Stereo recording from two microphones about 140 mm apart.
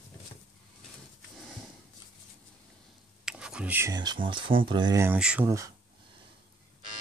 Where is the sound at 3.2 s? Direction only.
5° right (ahead or behind).